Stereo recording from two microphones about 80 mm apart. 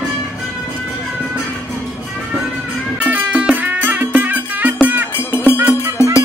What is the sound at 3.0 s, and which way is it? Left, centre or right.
Music, centre.